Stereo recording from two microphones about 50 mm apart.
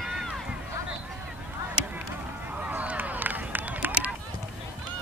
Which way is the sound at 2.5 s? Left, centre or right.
Right.